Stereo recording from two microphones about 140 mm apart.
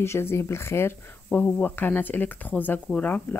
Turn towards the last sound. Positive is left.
turn(degrees=10)  # may be behind; listen again after turning